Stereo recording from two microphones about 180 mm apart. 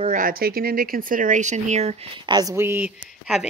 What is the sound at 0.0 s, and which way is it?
Speech, 50° right (ahead or behind).